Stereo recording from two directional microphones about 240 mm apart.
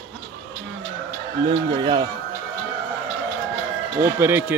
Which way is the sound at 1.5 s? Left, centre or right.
Right.